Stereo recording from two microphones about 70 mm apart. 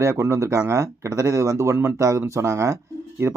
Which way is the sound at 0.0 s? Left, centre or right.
Right.